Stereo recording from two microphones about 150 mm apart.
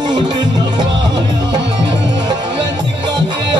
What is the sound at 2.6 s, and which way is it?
Music, 30° right (ahead or behind).